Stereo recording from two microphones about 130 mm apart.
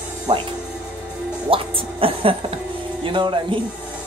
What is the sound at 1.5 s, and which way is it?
A woman's voice, 45° right (ahead or behind).